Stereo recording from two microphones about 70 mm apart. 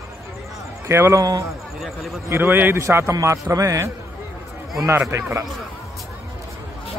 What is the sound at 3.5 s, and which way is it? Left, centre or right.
Speech, right.